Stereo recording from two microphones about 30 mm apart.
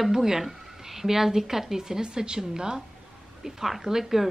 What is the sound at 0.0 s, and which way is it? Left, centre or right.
Speech, centre.